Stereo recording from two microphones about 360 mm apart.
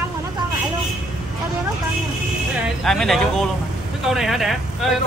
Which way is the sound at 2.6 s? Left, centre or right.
Centre.